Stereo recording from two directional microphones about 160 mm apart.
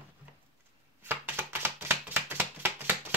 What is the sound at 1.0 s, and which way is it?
Chopping, 15° right (ahead or behind).